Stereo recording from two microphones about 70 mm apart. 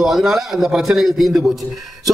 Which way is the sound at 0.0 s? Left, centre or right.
Centre.